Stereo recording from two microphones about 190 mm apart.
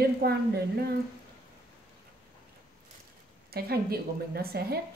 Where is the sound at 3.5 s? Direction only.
55° right (ahead or behind).